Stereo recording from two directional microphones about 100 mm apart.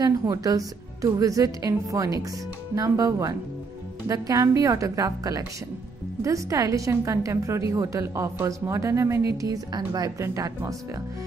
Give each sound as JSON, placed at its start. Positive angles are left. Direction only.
{"t": 0.0, "sound": "speech", "side_deg": -40}